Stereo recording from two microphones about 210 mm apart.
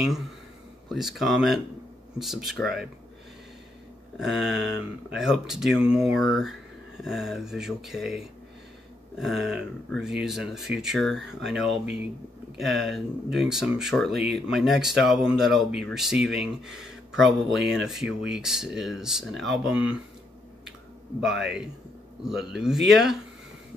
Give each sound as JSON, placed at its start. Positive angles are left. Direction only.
{"t": 0.8, "sound": "speech", "side_deg": 0}
{"t": 4.2, "sound": "speech", "side_deg": 0}
{"t": 21.2, "sound": "speech", "side_deg": 0}